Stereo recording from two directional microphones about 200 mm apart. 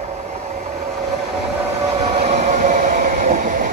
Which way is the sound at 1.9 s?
30° right (ahead or behind).